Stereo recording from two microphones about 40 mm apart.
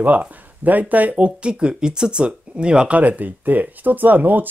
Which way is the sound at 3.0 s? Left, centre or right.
Right.